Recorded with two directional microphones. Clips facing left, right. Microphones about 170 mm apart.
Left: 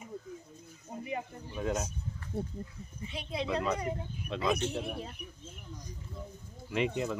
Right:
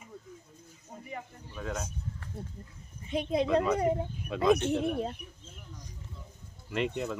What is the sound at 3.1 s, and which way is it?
Speech, 50° right (ahead or behind).